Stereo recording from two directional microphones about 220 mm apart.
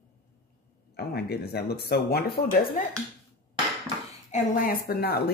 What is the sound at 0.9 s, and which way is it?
Speech, 45° left (ahead or behind).